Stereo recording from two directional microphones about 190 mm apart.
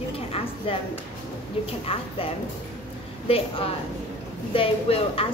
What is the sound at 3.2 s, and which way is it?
A woman's voice, 30° left (ahead or behind).